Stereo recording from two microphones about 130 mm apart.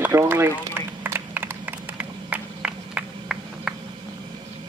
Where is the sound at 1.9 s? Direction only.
10° right (ahead or behind).